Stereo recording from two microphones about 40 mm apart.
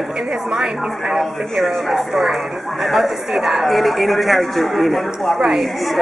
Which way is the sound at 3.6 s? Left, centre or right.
Centre.